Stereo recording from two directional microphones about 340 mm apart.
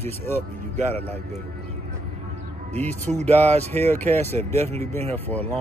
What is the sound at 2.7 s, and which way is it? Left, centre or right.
Speech, centre.